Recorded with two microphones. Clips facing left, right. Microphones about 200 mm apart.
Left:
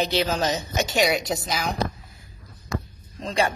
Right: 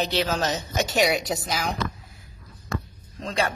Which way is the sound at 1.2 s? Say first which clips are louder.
Left 1 dB; 5° right (ahead or behind).